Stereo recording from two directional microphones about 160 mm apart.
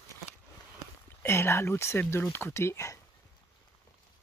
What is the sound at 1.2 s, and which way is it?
Speech, 15° left (ahead or behind).